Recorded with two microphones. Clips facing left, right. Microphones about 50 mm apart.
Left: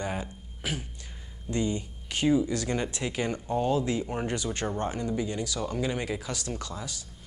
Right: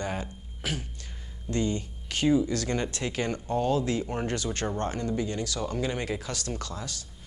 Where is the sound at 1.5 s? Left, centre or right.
Centre.